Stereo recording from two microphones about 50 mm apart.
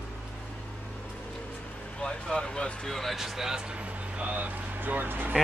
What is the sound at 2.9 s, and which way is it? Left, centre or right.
Speech, centre.